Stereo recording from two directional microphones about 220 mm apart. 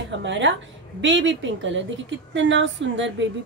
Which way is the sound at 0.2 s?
55° right (ahead or behind).